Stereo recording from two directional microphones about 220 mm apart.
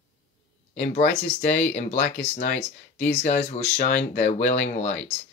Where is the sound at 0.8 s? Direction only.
30° left (ahead or behind).